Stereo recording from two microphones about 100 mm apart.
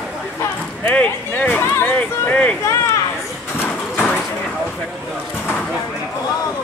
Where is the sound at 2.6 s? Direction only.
30° left (ahead or behind).